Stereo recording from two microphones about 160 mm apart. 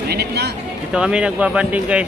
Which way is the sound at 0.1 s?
90° right.